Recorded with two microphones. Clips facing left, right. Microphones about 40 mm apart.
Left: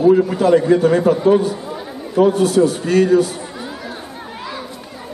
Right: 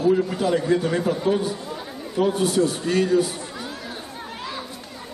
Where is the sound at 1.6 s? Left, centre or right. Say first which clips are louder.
Left 5 dB; centre.